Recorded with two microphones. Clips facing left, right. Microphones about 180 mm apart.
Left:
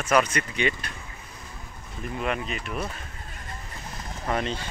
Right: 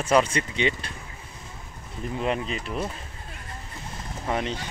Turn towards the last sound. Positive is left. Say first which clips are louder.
# even
turn(degrees=-15)  # may be behind; listen again after turning